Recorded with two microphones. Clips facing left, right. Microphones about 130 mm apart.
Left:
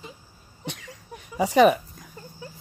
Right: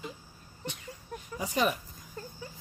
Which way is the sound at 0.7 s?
85° left.